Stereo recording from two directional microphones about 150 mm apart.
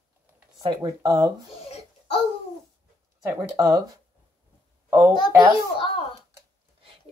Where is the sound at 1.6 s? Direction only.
40° left (ahead or behind).